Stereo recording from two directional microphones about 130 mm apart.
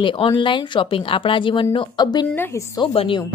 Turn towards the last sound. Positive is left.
turn(degrees=45)  # may be behind; listen again after turning